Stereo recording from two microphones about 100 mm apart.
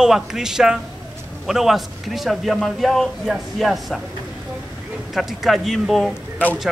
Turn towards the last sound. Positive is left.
turn(degrees=15)  # may be behind; listen again after turning